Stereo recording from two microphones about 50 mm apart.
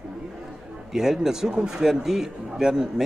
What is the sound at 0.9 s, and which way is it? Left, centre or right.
Speech, centre.